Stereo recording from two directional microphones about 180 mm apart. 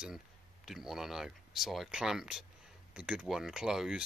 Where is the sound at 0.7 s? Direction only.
Centre (ahead or behind).